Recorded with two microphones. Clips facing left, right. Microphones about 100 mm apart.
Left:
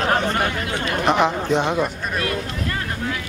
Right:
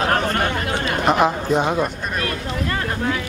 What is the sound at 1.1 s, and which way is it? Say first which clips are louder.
Speech: right 1 dB; 5° right (ahead or behind).